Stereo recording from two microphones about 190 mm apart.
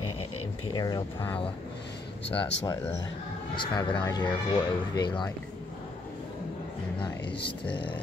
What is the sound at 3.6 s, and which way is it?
Speech, 25° left (ahead or behind).